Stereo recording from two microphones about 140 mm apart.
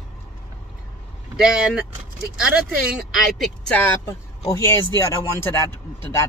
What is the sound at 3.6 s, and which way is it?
Speech, 10° left (ahead or behind).